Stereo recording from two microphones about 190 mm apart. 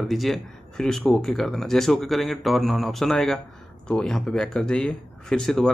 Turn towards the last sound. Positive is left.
turn(degrees=0)  # may be behind; listen again after turning